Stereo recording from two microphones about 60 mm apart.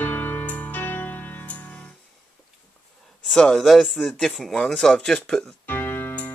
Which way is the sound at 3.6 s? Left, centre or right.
Centre.